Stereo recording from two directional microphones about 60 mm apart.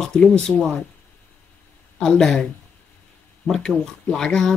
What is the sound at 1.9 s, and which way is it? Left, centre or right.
Speech, centre.